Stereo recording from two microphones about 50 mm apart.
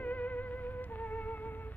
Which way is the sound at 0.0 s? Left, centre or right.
Left.